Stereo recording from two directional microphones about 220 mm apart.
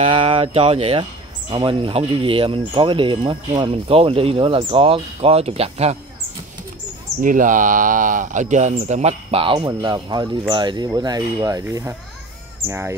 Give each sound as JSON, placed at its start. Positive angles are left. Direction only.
{"t": 0.0, "sound": "speech", "side_deg": -25}
{"t": 7.2, "sound": "speech", "side_deg": -35}